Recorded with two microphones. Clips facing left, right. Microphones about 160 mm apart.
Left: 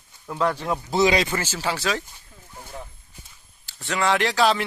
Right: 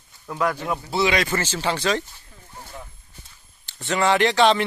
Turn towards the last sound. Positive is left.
turn(degrees=0)  # may be behind; listen again after turning